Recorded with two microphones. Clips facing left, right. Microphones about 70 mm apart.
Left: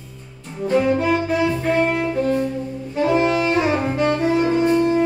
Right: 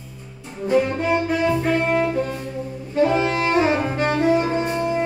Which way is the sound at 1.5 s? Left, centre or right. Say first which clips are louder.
Even; centre.